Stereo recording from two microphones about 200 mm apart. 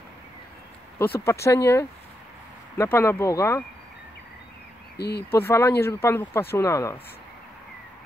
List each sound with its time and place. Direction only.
1.2 s speech: 15° left (ahead or behind)
4.9 s speech: 55° left (ahead or behind)
5.3 s speech: 10° left (ahead or behind)